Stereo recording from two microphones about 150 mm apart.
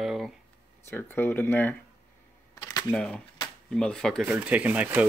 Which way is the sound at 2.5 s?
25° left (ahead or behind).